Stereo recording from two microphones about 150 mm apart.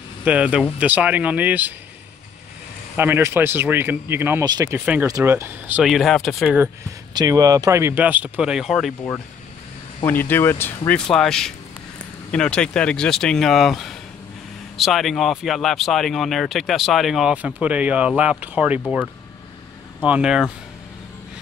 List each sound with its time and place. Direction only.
0.2 s speech: 10° right (ahead or behind)
3.0 s speech: 15° right (ahead or behind)
4.5 s speech: 25° right (ahead or behind)
4.7 s speech: 10° right (ahead or behind)
7.2 s speech: 25° right (ahead or behind); by 8.9 s centre (ahead or behind)
10.0 s speech: 15° left (ahead or behind)
10.9 s speech: 5° left (ahead or behind)
20.1 s speech: 5° right (ahead or behind)